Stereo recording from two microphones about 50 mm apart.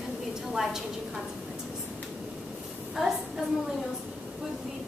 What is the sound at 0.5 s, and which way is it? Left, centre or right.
Speech, centre.